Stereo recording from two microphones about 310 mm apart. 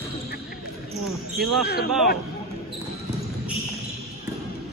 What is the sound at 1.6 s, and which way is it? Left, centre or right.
Speech, left.